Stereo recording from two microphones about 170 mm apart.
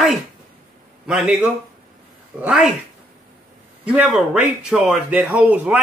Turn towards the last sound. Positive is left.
turn(degrees=-10)  # may be behind; listen again after turning